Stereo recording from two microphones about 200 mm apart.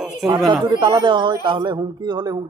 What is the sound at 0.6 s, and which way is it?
Speech, 20° right (ahead or behind).